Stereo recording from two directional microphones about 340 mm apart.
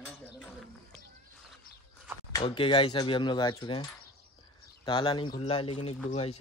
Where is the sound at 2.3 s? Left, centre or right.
Centre.